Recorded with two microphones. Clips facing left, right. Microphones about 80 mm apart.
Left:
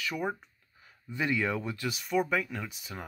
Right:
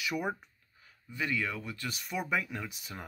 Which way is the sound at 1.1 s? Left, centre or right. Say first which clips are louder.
Left 4 dB; left.